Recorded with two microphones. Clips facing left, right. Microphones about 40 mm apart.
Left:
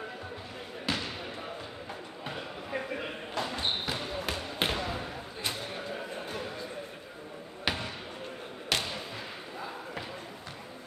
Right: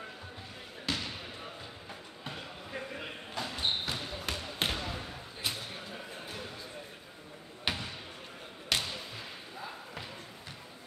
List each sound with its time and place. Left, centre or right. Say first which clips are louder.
0.9 s basketball bounce: left 2 dB; centre
2.2 s basketball bounce: left 4 dB; centre
7.6 s basketball bounce: left 3 dB; centre